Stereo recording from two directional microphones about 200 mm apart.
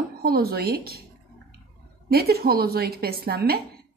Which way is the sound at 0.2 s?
50° right (ahead or behind).